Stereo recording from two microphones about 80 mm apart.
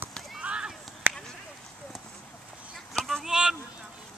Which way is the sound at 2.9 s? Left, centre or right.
Centre.